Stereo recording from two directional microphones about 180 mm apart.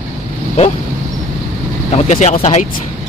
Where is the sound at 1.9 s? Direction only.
35° left (ahead or behind).